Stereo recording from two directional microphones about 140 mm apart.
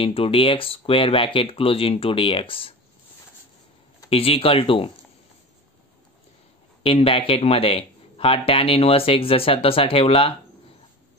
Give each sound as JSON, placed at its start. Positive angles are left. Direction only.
{"t": 0.0, "sound": "speech", "side_deg": 40}
{"t": 4.1, "sound": "speech", "side_deg": 45}
{"t": 6.8, "sound": "speech", "side_deg": 40}